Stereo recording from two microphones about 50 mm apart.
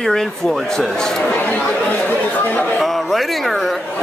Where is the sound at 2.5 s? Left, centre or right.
Left.